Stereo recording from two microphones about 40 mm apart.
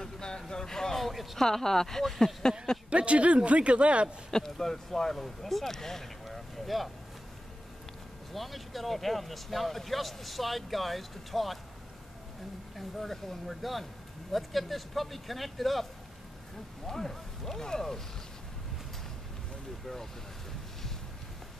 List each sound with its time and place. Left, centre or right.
0.0 s a sound: centre
0.4 s speech: centre
2.9 s a man's voice: right
4.3 s speech: centre
6.2 s a sound: centre
8.3 s speech: centre
12.7 s speech: centre